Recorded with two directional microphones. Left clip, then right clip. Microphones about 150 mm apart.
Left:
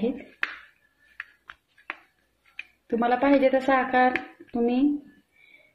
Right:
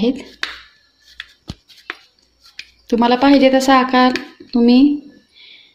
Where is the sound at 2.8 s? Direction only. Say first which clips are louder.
Right 9 dB; 90° right.